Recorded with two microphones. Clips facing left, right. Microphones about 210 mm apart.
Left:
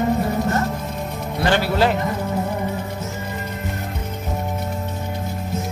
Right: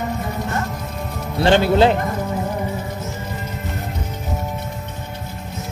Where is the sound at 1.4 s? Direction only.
25° right (ahead or behind).